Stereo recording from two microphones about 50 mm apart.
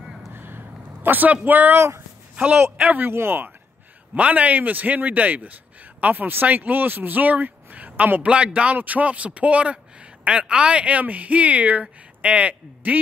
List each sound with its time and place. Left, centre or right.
0.3 s a sound: right
1.8 s speech: right
2.9 s speech: right
4.1 s speech: right